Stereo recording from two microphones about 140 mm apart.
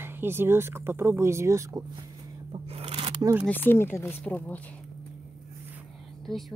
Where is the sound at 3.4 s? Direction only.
15° left (ahead or behind).